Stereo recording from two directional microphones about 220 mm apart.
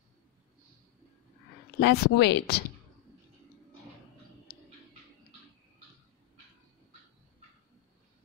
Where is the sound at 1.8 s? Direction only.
50° left (ahead or behind).